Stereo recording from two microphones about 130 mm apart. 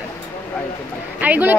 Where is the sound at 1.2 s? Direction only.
15° right (ahead or behind).